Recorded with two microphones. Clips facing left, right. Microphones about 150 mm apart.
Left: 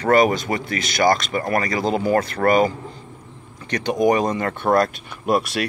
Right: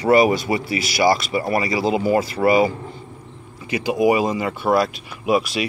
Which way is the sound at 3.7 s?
5° right (ahead or behind).